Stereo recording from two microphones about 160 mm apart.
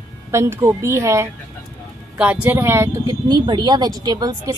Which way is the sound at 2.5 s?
15° right (ahead or behind).